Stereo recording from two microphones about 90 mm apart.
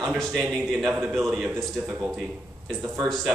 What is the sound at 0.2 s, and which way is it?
A man's voice, centre (ahead or behind).